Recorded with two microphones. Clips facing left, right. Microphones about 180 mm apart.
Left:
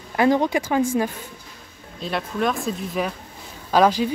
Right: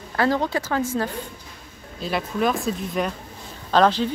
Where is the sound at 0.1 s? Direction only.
15° left (ahead or behind).